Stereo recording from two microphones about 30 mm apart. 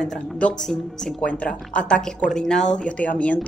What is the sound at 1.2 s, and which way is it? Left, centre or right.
Speech, left.